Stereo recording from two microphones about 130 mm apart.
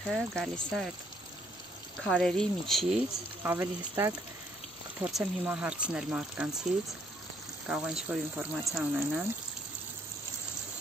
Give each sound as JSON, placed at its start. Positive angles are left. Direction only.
{"t": 0.1, "sound": "speech", "side_deg": 5}
{"t": 2.0, "sound": "speech", "side_deg": 5}
{"t": 3.4, "sound": "speech", "side_deg": -20}
{"t": 5.0, "sound": "speech", "side_deg": -5}